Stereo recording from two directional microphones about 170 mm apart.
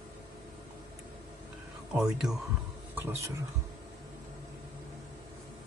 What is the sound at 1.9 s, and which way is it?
Speech, 5° right (ahead or behind).